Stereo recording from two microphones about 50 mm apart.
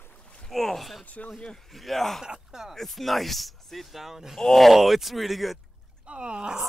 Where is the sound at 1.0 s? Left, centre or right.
Left.